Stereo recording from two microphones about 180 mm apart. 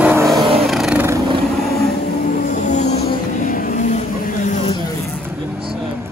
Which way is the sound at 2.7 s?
40° left (ahead or behind).